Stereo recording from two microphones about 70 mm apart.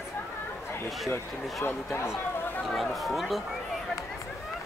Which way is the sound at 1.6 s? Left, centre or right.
Left.